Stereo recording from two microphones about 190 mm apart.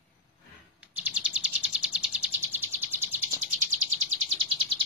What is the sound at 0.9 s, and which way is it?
Bird, 5° right (ahead or behind).